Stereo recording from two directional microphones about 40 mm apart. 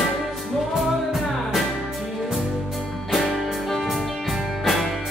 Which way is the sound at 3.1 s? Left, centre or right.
Centre.